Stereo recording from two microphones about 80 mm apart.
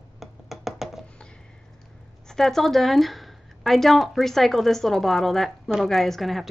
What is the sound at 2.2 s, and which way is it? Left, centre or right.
A woman's voice, centre.